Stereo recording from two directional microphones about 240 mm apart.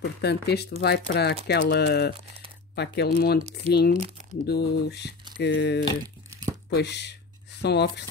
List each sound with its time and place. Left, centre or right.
0.0 s speech: left